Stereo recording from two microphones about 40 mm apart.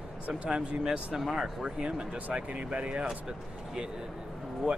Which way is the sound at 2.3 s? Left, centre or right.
Right.